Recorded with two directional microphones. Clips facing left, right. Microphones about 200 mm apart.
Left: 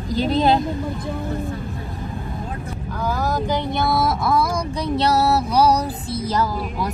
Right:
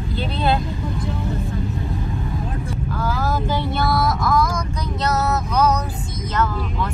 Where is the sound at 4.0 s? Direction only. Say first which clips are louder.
Even; 30° left (ahead or behind).